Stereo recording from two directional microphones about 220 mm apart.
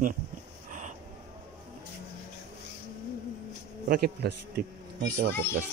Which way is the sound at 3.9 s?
50° right (ahead or behind).